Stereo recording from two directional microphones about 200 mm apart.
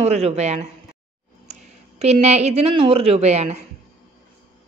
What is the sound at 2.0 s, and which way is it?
A woman's voice, 35° right (ahead or behind).